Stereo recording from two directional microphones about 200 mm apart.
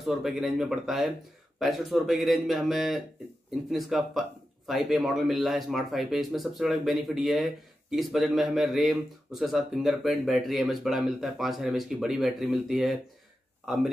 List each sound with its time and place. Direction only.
0.0 s speech: centre (ahead or behind)